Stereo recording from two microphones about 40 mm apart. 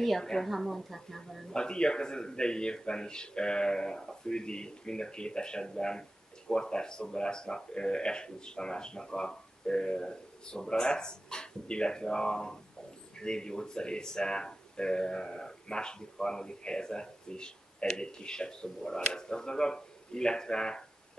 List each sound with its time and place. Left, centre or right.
0.2 s speech: centre
0.5 s speech: centre
1.5 s speech: left